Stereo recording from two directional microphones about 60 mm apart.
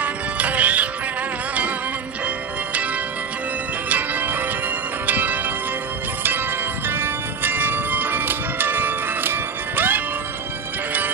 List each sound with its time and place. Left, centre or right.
0.0 s music: right
3.9 s music: right
5.0 s bell: right
6.9 s music: right